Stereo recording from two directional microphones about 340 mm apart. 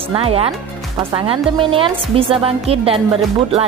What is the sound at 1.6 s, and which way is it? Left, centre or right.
Speech, centre.